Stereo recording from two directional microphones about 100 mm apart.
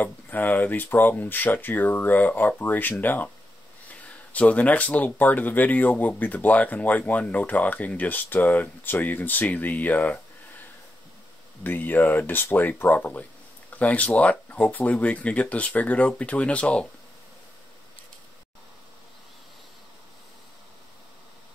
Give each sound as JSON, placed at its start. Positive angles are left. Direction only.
{"t": 0.0, "sound": "speech", "side_deg": 20}
{"t": 11.6, "sound": "speech", "side_deg": 20}